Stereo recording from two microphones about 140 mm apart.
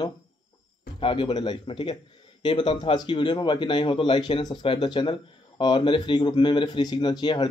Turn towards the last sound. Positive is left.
turn(degrees=30)  # may be behind; listen again after turning